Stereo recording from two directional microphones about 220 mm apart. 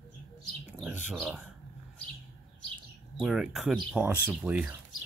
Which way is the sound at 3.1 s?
5° right (ahead or behind).